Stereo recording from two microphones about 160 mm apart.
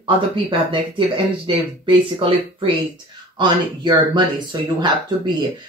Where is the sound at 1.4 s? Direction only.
35° right (ahead or behind).